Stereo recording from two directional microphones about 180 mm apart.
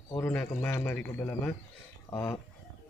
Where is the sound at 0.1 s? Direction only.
10° left (ahead or behind).